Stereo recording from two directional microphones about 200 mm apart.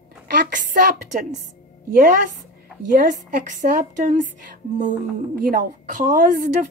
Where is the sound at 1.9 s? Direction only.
45° right (ahead or behind).